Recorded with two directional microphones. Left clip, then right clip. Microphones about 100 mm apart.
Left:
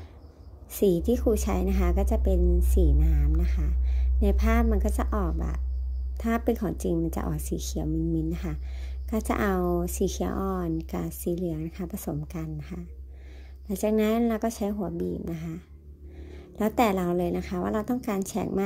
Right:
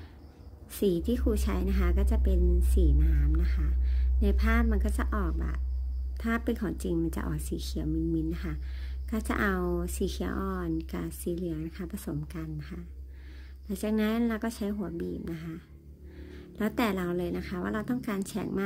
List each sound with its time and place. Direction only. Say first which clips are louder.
0.7 s a woman's voice: left 5 dB; 35° left (ahead or behind)